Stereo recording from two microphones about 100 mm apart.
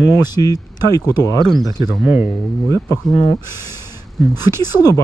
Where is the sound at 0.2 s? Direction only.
40° left (ahead or behind).